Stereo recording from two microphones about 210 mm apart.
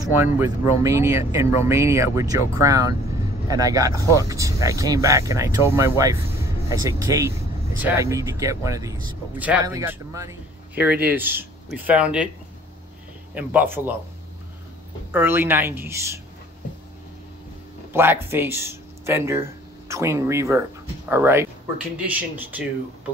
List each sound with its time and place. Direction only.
0.0 s speech: 10° right (ahead or behind)
13.3 s speech: 10° right (ahead or behind)
15.0 s speech: 10° right (ahead or behind)
17.9 s speech: 10° right (ahead or behind)